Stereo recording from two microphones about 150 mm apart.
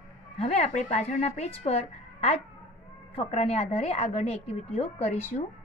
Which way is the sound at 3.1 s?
40° left (ahead or behind).